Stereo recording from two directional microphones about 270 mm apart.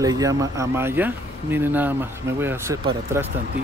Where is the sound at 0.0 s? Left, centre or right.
Centre.